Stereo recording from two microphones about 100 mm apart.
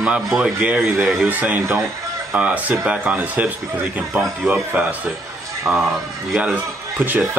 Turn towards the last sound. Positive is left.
turn(degrees=-20)  # may be behind; listen again after turning